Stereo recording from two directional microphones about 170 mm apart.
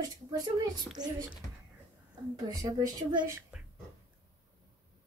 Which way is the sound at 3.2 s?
5° right (ahead or behind).